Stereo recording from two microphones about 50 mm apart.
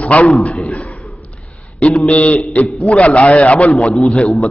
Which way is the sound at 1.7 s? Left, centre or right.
Left.